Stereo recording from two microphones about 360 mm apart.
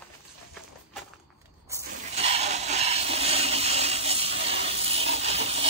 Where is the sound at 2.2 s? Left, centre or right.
Centre.